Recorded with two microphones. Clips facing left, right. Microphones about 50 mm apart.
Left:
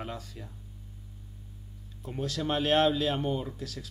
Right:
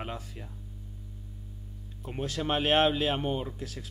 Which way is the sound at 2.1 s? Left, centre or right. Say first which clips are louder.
Even; right.